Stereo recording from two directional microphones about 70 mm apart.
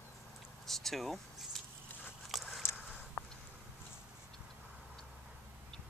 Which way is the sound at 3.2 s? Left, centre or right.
Left.